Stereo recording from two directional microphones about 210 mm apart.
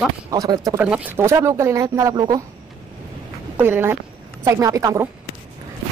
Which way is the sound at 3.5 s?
10° right (ahead or behind).